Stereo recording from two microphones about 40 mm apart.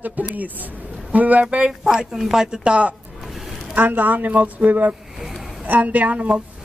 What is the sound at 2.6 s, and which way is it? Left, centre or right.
Speech, right.